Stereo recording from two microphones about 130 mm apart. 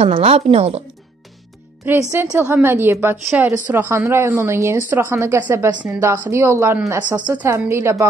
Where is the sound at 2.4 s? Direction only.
15° right (ahead or behind).